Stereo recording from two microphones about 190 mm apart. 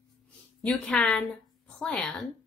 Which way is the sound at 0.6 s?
5° left (ahead or behind).